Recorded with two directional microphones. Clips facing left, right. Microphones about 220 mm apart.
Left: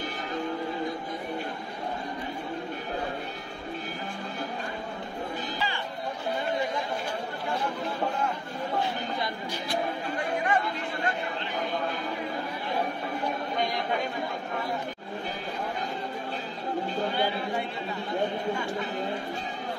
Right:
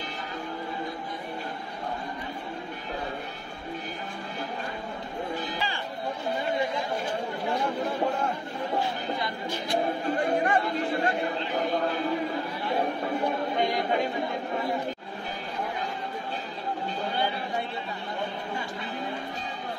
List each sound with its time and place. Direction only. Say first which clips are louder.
10.3 s chatter: right 3 dB; 35° right (ahead or behind)